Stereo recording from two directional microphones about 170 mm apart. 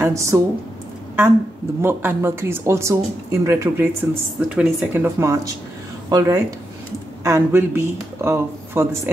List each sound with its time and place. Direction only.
0.0 s speech: 15° right (ahead or behind)
1.8 s speech: 15° right (ahead or behind)